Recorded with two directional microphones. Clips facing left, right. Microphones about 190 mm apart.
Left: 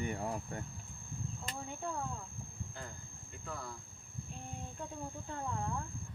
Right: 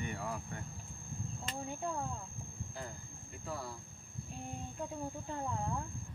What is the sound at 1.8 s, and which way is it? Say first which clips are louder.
Speech: right 1 dB; 15° right (ahead or behind).